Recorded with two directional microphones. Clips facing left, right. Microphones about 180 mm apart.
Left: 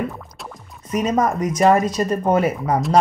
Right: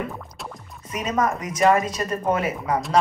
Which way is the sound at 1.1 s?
40° left (ahead or behind).